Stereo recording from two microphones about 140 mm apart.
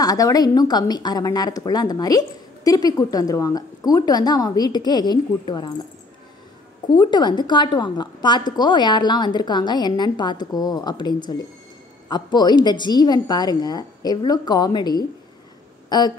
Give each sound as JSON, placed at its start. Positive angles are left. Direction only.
{"t": 0.0, "sound": "speech", "side_deg": 25}
{"t": 6.9, "sound": "a woman's voice", "side_deg": 30}